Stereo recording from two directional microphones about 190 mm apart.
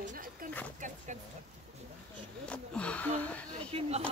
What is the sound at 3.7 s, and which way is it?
Speech, 30° right (ahead or behind).